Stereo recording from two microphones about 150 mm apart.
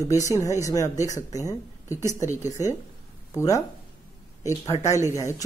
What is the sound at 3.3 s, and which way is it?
Speech, 20° left (ahead or behind).